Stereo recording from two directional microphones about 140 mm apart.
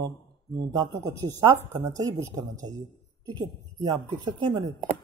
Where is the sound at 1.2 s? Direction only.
25° right (ahead or behind).